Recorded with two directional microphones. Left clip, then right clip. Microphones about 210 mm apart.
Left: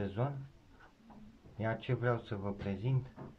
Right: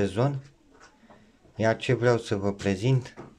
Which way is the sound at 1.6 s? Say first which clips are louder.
Right 13 dB; 30° right (ahead or behind).